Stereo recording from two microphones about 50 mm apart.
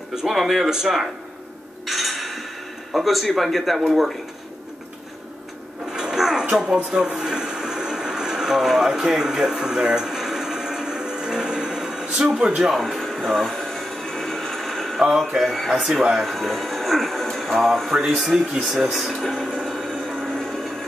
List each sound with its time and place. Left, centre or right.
0.1 s speech: centre
1.9 s a sound: centre
2.9 s speech: centre
5.9 s a sound: centre
6.5 s speech: centre
7.2 s television: centre
12.4 s speech: centre
12.7 s television: centre
15.0 s speech: centre
20.2 s a sound: centre